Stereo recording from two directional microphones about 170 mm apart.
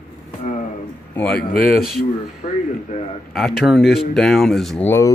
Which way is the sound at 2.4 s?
45° left (ahead or behind).